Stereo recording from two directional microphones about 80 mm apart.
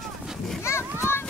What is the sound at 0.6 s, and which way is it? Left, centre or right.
Speech, left.